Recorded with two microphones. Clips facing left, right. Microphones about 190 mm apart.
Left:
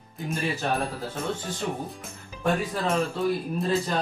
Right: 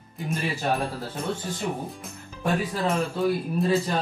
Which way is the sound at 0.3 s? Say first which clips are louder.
Right 1 dB; centre (ahead or behind).